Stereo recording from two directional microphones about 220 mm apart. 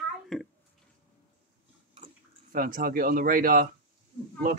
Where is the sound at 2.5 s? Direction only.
40° right (ahead or behind).